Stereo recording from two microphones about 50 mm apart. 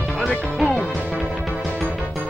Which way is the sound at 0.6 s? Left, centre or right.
Centre.